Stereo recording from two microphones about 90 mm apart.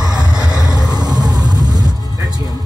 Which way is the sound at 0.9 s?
50° right (ahead or behind).